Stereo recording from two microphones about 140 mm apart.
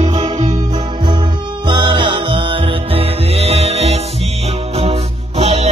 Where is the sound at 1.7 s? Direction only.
35° right (ahead or behind).